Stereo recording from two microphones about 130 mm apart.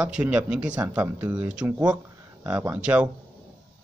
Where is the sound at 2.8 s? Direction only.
10° right (ahead or behind).